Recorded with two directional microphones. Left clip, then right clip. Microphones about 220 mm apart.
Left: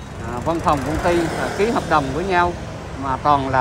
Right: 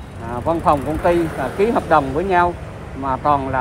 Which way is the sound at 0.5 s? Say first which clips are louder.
Right 2 dB; centre (ahead or behind).